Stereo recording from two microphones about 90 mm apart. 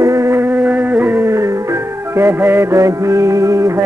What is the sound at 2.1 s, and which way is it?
Music, 30° right (ahead or behind).